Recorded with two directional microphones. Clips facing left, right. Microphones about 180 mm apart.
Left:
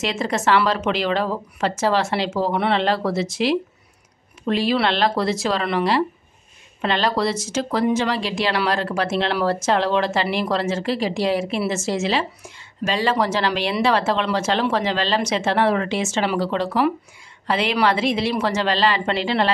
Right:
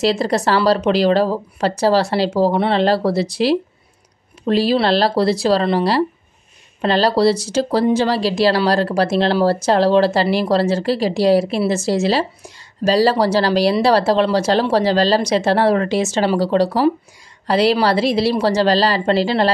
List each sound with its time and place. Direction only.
0.0 s speech: 35° right (ahead or behind)